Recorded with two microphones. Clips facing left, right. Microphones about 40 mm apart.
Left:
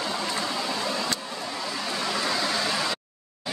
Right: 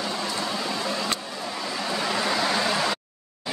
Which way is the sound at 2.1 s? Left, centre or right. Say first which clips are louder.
Right 3 dB; centre.